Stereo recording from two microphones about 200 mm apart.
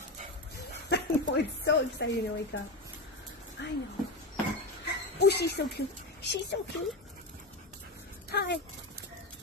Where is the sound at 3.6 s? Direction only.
60° left (ahead or behind).